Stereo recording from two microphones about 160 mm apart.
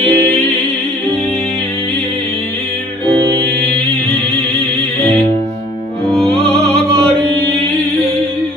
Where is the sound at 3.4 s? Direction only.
90° right.